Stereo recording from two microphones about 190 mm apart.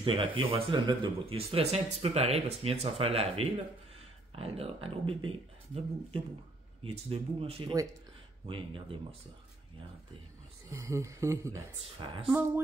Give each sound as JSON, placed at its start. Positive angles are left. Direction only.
{"t": 0.0, "sound": "speech", "side_deg": -25}
{"t": 6.8, "sound": "speech", "side_deg": -30}
{"t": 10.7, "sound": "speech", "side_deg": -15}